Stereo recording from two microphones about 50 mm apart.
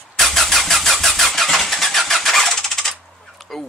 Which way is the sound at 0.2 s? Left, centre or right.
Centre.